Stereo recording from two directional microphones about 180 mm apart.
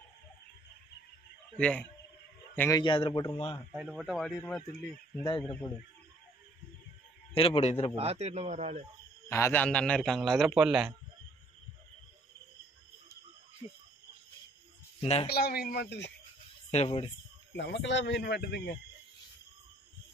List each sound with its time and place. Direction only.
1.6 s a man's voice: 5° left (ahead or behind)
2.8 s a man's voice: 25° left (ahead or behind)
3.7 s a man's voice: centre (ahead or behind)
7.3 s a man's voice: 30° left (ahead or behind)
7.9 s speech: 35° right (ahead or behind)
9.3 s a man's voice: 10° left (ahead or behind); by 10.9 s 5° right (ahead or behind)
15.0 s speech: 35° left (ahead or behind)
15.2 s speech: 60° left (ahead or behind)
16.7 s a man's voice: 35° left (ahead or behind)
17.6 s speech: 80° left